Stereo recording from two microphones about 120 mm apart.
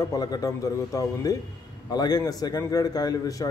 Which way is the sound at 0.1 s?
30° left (ahead or behind).